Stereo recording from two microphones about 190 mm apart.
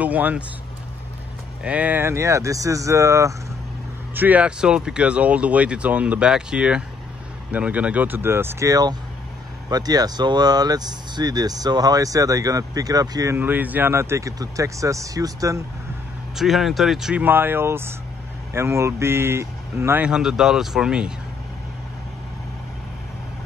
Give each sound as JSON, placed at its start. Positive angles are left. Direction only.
{"t": 0.0, "sound": "speech", "side_deg": -10}
{"t": 1.6, "sound": "speech", "side_deg": -5}
{"t": 16.3, "sound": "speech", "side_deg": 0}